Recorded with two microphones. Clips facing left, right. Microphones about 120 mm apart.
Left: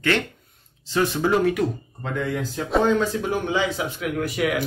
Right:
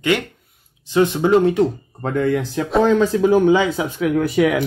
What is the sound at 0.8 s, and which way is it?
Speech, 20° right (ahead or behind).